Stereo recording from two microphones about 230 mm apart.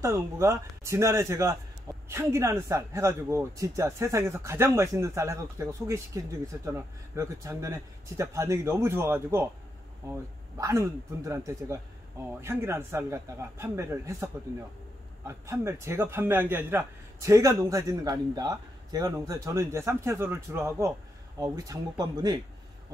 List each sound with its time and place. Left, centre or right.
0.0 s a man's voice: centre